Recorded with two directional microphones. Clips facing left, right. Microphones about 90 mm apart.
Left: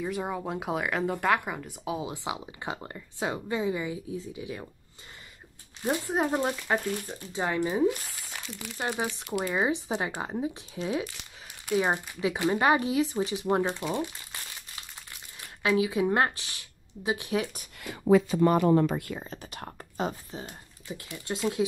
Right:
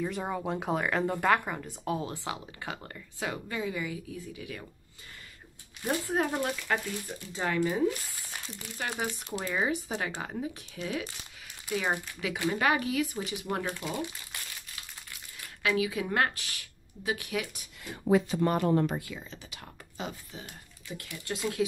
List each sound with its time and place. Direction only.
0.0 s speech: 5° left (ahead or behind)
2.1 s speech: 20° left (ahead or behind)
5.8 s speech: 20° left (ahead or behind)
15.4 s speech: 30° left (ahead or behind)
18.9 s speech: 50° left (ahead or behind)
20.9 s speech: 25° left (ahead or behind)